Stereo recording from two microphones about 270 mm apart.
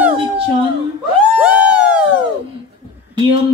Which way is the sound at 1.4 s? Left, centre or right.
Centre.